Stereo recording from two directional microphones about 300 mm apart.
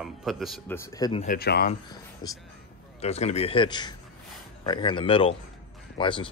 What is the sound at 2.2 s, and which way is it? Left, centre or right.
Speech, centre.